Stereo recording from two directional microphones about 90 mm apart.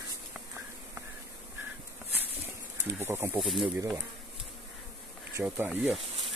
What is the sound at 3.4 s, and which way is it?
Speech, centre (ahead or behind).